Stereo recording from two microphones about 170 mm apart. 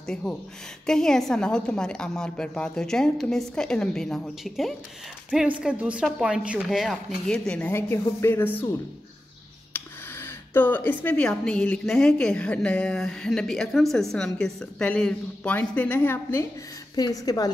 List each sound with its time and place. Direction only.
0.0 s speech: 5° left (ahead or behind)
9.7 s a woman's voice: 10° left (ahead or behind)